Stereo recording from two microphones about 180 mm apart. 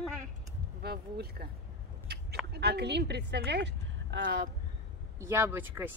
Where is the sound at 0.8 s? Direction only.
60° right (ahead or behind).